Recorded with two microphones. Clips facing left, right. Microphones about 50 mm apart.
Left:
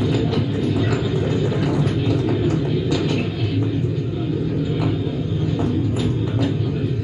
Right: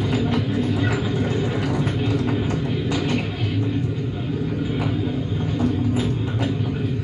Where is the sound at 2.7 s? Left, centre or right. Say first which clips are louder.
Left 2 dB; right.